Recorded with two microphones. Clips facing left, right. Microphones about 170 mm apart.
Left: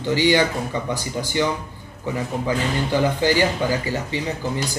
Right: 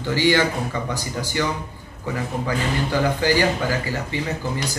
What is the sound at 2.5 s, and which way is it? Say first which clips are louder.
Speech: left 2 dB; 20° left (ahead or behind).